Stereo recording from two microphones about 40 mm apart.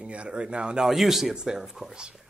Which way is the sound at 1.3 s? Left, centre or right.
Centre.